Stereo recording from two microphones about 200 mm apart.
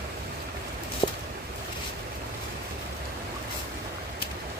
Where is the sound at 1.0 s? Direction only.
25° left (ahead or behind).